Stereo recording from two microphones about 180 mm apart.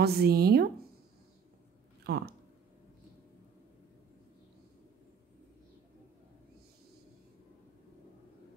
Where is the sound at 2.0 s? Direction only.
65° right (ahead or behind).